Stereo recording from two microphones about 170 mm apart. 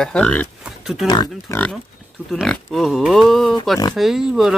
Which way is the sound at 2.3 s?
Centre (ahead or behind).